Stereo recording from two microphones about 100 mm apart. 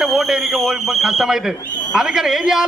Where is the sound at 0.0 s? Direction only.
Centre (ahead or behind).